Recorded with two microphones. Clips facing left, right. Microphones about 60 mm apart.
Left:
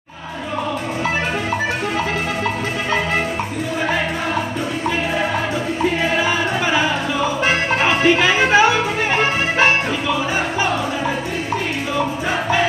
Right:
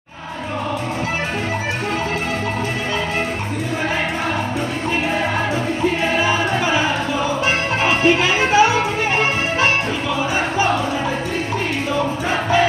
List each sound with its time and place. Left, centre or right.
6.1 s music: left
7.7 s music: left